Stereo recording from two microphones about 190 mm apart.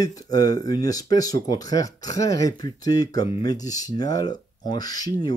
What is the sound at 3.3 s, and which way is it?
Speech, 30° left (ahead or behind).